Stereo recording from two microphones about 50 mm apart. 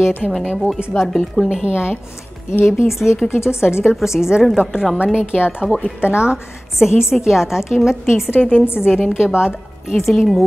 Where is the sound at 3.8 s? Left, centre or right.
Centre.